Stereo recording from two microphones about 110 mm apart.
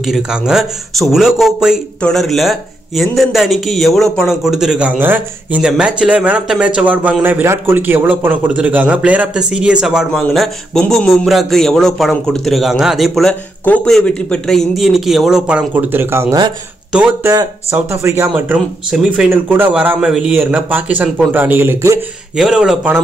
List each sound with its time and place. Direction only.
0.0 s a man's voice: 5° right (ahead or behind)
2.0 s a man's voice: 5° left (ahead or behind)
15.7 s speech: 15° right (ahead or behind)
18.3 s a man's voice: 10° right (ahead or behind)
22.4 s a man's voice: 5° right (ahead or behind)